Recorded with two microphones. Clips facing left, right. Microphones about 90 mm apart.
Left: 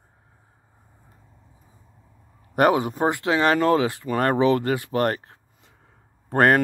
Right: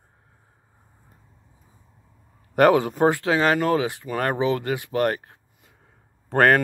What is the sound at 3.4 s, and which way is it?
Speech, 40° left (ahead or behind).